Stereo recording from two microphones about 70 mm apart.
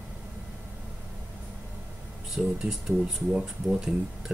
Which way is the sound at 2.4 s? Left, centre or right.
Centre.